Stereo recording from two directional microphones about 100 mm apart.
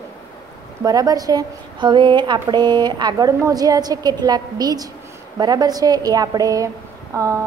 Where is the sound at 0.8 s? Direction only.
40° right (ahead or behind).